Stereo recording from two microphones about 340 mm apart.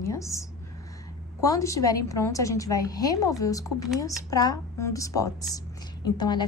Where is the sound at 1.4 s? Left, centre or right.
Centre.